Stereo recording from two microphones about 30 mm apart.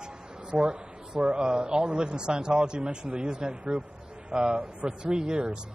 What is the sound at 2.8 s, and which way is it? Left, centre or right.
Speech, right.